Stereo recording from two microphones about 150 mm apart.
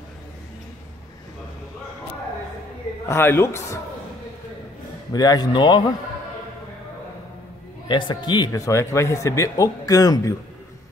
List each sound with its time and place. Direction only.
3.1 s a man's voice: 15° left (ahead or behind)
5.1 s speech: 25° left (ahead or behind)
7.9 s speech: 30° left (ahead or behind)